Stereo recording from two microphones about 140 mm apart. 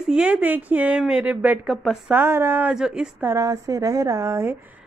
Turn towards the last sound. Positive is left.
turn(degrees=-20)  # may be behind; listen again after turning